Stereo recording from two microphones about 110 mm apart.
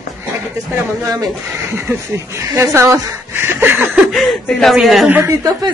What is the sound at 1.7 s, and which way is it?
Speech, 20° right (ahead or behind).